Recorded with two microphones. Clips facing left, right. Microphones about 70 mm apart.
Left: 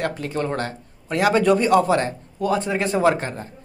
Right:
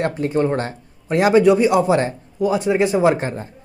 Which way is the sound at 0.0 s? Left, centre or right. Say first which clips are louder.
Right 6 dB; right.